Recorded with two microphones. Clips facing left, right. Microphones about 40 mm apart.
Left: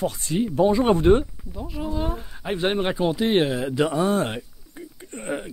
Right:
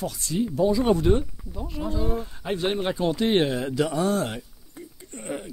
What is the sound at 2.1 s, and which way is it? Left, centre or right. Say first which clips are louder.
Speech: even; centre.